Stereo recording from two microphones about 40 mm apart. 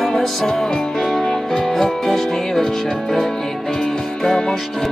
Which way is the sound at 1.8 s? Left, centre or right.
Centre.